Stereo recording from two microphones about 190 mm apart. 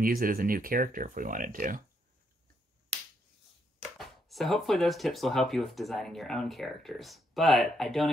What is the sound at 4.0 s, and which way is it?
Speech, centre (ahead or behind).